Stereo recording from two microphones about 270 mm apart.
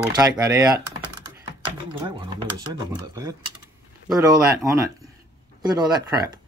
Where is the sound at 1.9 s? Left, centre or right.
Centre.